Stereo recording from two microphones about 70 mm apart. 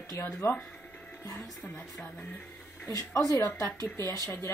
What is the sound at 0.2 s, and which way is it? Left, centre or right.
Speech, left.